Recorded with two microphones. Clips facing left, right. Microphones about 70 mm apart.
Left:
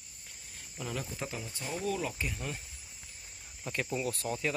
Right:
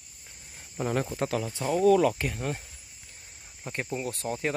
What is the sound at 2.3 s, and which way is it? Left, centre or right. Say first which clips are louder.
Speech: right 7 dB; right.